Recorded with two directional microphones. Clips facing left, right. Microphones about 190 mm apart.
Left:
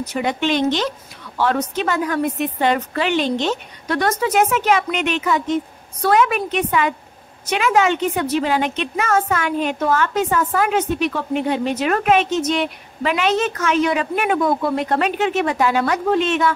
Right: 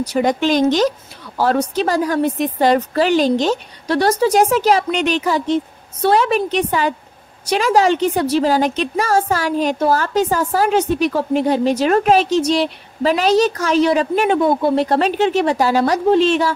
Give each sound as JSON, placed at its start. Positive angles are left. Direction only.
{"t": 0.0, "sound": "a woman's voice", "side_deg": -35}